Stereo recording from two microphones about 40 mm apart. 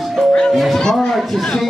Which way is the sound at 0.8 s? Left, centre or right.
Centre.